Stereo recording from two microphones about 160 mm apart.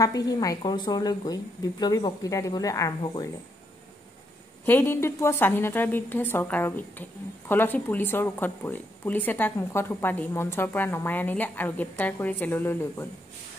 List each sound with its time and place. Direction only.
0.0 s a woman's voice: 25° left (ahead or behind)
4.6 s a woman's voice: 15° left (ahead or behind)